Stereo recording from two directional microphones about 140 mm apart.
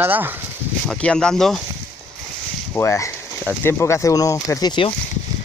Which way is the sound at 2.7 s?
20° left (ahead or behind).